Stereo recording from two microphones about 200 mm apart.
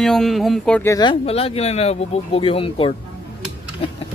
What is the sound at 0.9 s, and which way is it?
Speech, 20° left (ahead or behind).